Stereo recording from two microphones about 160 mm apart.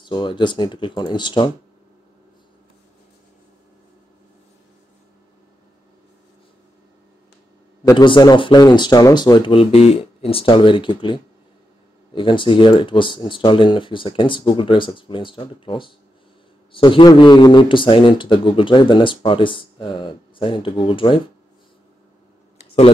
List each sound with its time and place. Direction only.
0.0 s speech: 30° left (ahead or behind)
7.8 s a man's voice: 30° left (ahead or behind)